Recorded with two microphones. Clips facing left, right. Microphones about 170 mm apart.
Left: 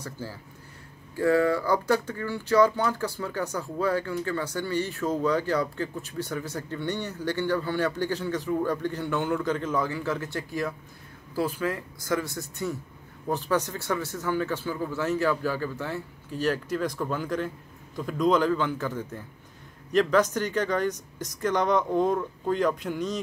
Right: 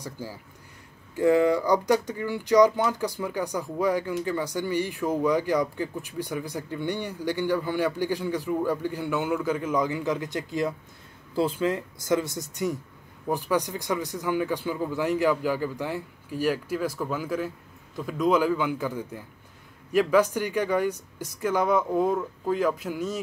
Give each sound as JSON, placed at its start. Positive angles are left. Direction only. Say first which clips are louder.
{"t": 0.0, "sound": "speech", "louder": "right 1 dB", "side_deg": -15}